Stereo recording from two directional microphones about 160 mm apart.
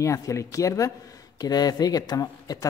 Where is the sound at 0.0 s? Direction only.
20° left (ahead or behind).